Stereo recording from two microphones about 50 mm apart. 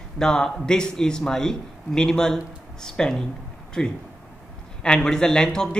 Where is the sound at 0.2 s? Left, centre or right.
Centre.